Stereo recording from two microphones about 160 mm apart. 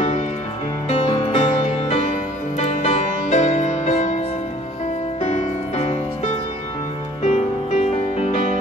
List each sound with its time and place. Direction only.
0.8 s music: 35° left (ahead or behind)
5.2 s music: 45° left (ahead or behind)
7.2 s music: 45° left (ahead or behind)